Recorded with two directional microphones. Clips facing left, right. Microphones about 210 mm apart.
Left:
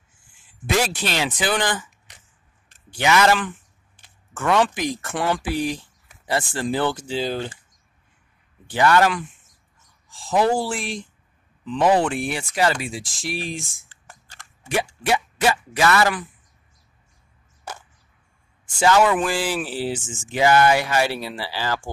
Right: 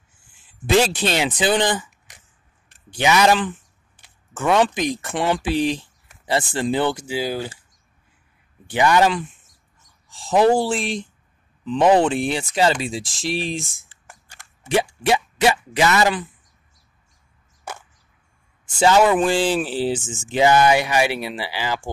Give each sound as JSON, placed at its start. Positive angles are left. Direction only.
{"t": 0.7, "sound": "speech", "side_deg": -25}
{"t": 2.9, "sound": "speech", "side_deg": -15}
{"t": 8.6, "sound": "speech", "side_deg": -15}
{"t": 10.3, "sound": "speech", "side_deg": -25}
{"t": 14.0, "sound": "a sound", "side_deg": -15}
{"t": 18.8, "sound": "speech", "side_deg": -20}